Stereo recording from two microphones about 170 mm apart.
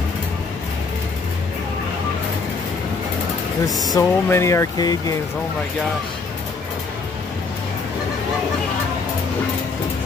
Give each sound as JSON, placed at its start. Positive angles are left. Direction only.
{"t": 3.9, "sound": "speech", "side_deg": 15}